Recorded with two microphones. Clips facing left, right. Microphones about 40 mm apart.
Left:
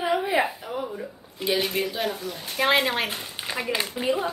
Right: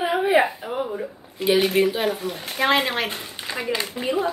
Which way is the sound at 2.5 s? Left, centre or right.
Centre.